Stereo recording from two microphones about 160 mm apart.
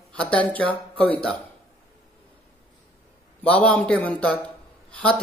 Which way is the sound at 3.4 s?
10° left (ahead or behind).